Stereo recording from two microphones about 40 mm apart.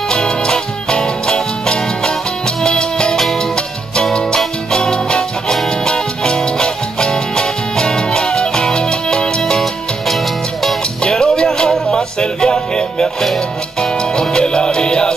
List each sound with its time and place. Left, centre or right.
0.1 s music: left
4.7 s music: centre
11.1 s music: centre